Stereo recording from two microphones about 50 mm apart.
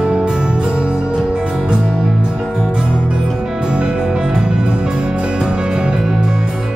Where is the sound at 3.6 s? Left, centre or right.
Centre.